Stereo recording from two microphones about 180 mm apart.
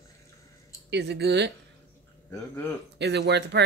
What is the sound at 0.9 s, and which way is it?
Speech, 70° right (ahead or behind).